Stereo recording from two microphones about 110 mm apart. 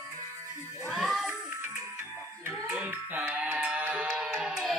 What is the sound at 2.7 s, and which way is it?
Music, 15° right (ahead or behind).